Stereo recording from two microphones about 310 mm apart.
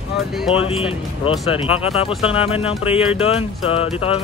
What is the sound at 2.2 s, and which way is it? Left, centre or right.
Speech, centre.